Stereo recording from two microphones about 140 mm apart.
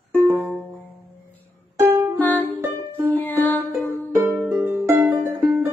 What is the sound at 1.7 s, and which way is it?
Music, 20° right (ahead or behind).